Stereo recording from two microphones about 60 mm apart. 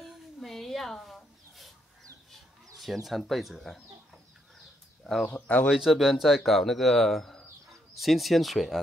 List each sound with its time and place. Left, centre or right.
0.0 s a sound: centre
2.3 s speech: centre
5.0 s speech: centre
5.3 s speech: left
5.8 s speech: centre